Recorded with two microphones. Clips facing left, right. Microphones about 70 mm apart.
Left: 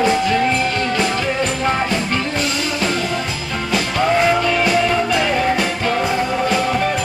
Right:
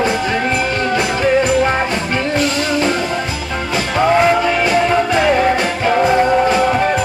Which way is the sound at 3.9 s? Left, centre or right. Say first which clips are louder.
Right 4 dB; centre.